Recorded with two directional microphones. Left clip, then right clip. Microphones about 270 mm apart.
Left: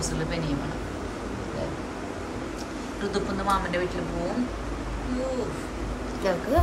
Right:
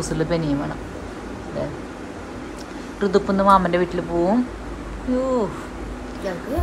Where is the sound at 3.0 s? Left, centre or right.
Centre.